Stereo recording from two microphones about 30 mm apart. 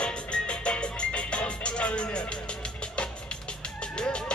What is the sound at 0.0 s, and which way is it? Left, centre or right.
Music, left.